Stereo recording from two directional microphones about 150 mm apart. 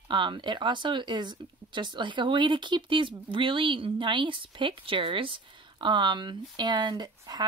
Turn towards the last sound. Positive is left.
turn(degrees=-30)  # may be behind; listen again after turning